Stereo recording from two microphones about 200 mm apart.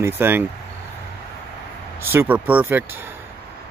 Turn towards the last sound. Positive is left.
turn(degrees=-10)  # may be behind; listen again after turning